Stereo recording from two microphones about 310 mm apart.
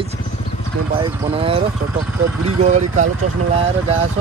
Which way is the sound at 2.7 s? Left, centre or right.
Right.